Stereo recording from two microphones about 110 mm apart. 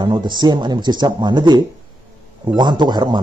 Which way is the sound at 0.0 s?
40° right (ahead or behind).